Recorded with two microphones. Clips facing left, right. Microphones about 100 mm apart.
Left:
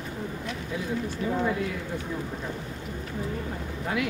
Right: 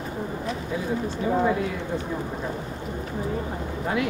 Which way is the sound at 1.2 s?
40° right (ahead or behind).